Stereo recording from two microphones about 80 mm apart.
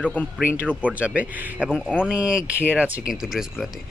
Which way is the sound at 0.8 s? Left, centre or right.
Centre.